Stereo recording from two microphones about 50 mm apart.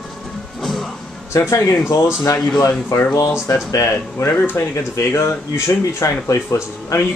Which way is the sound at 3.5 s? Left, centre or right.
Left.